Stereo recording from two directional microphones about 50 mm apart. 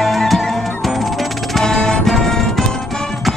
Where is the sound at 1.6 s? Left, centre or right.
Centre.